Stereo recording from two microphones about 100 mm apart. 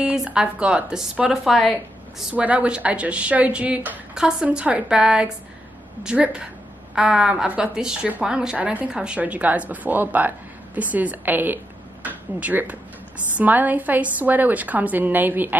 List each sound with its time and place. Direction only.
0.0 s a woman's voice: 10° right (ahead or behind)
2.3 s speech: 15° right (ahead or behind)